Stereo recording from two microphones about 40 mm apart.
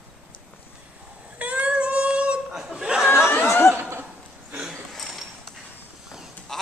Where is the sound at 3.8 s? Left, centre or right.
Right.